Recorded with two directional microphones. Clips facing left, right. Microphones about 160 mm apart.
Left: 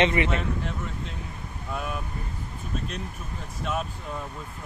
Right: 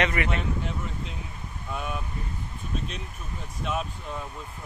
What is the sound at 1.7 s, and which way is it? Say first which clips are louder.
Vehicle: left 1 dB; centre (ahead or behind).